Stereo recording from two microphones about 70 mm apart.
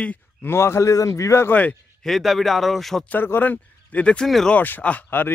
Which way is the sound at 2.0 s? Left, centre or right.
Centre.